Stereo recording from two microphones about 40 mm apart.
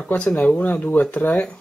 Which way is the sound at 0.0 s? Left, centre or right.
Left.